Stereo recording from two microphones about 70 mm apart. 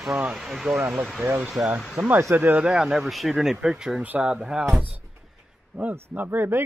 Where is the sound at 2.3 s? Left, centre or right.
Right.